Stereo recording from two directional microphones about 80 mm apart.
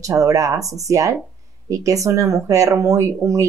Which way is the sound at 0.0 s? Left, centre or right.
Right.